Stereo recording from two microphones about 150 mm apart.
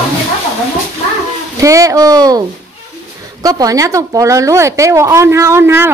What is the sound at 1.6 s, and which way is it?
A woman's voice, 20° right (ahead or behind).